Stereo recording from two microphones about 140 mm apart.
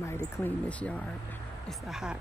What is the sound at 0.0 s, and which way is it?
Speech, 20° left (ahead or behind).